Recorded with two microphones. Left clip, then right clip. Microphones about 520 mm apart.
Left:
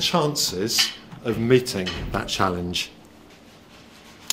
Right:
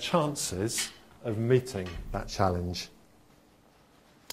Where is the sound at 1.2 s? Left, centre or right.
Right.